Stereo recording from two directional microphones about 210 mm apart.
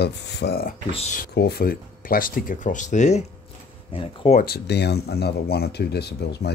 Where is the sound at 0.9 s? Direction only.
35° left (ahead or behind).